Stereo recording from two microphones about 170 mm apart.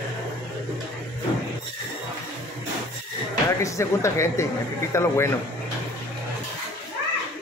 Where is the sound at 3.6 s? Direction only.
15° left (ahead or behind).